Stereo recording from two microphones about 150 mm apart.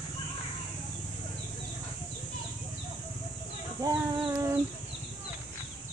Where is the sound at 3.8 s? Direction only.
20° right (ahead or behind).